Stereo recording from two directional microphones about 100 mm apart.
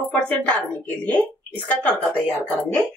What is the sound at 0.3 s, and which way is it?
A woman's voice, 15° left (ahead or behind).